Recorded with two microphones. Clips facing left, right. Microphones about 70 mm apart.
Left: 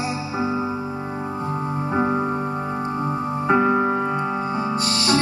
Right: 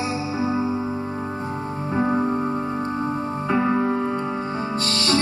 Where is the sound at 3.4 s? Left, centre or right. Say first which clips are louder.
Left 3 dB; centre.